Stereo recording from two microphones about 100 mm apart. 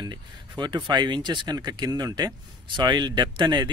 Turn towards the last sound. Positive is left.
turn(degrees=-50)  # may be behind; listen again after turning